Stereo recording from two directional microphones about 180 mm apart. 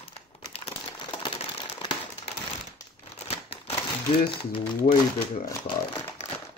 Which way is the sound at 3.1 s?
35° left (ahead or behind).